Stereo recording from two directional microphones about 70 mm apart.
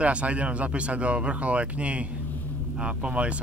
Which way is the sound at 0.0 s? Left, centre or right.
Centre.